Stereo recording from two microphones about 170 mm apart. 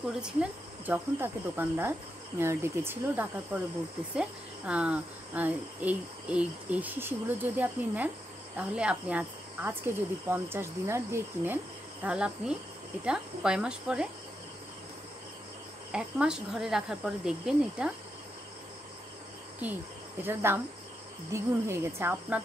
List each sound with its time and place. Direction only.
0.0 s speech: 5° right (ahead or behind)
15.9 s speech: 5° right (ahead or behind)
20.2 s speech: 15° right (ahead or behind)